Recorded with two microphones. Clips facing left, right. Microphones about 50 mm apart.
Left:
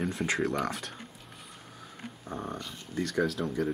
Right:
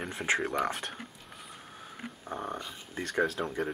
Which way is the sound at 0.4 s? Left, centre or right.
Centre.